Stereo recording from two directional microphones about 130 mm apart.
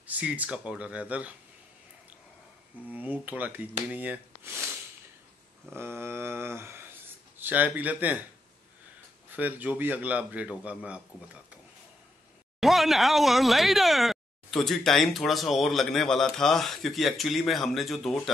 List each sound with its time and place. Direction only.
0.0 s a man's voice: 10° right (ahead or behind)
2.9 s a man's voice: 15° right (ahead or behind)
5.7 s mantra: 20° right (ahead or behind)
7.3 s a man's voice: 15° right (ahead or behind)
9.3 s a man's voice: 10° right (ahead or behind)
12.5 s speech: centre (ahead or behind)